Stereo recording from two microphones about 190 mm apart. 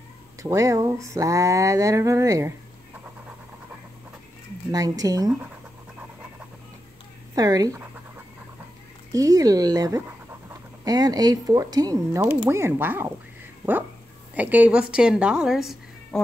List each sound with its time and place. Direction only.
0.4 s a sound: 15° right (ahead or behind)
4.6 s speech: 20° right (ahead or behind)
7.3 s speech: 20° right (ahead or behind)
9.1 s speech: 20° right (ahead or behind)
12.4 s a sound: 15° right (ahead or behind)
14.3 s speech: 10° right (ahead or behind)